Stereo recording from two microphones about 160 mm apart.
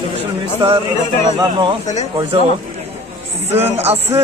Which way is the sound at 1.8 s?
45° left (ahead or behind).